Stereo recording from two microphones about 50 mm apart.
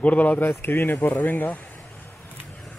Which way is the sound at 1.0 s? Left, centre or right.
Left.